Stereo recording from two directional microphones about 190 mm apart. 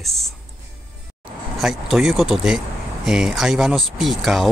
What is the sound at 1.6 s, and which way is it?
Speech, centre (ahead or behind).